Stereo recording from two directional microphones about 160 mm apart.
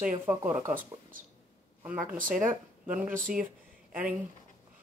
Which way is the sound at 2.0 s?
60° right (ahead or behind).